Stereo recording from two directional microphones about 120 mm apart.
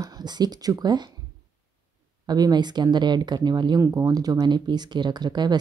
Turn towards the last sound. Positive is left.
turn(degrees=-35)  # may be behind; listen again after turning